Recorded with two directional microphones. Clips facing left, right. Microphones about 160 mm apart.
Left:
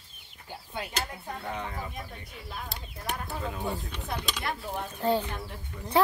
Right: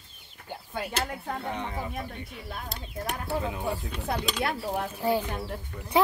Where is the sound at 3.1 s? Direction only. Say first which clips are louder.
Right 3 dB; 5° right (ahead or behind).